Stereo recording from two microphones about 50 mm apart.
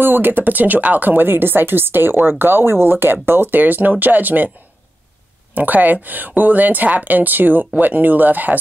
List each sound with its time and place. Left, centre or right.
0.0 s speech: right
5.5 s speech: right